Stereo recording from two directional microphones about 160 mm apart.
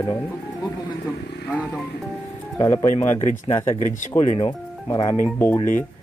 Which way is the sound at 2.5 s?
20° left (ahead or behind).